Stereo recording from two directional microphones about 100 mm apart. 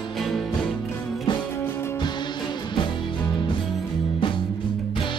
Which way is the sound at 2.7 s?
55° left (ahead or behind).